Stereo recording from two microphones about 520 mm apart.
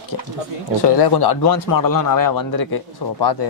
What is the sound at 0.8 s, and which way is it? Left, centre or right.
Speech, left.